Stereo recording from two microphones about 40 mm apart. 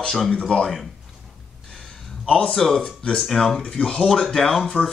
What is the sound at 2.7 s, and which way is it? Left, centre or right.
Speech, centre.